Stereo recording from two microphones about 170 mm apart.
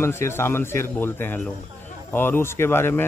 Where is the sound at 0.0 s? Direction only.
15° left (ahead or behind).